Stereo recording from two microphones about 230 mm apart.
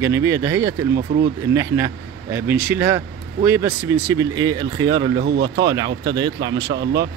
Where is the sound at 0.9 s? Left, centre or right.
Right.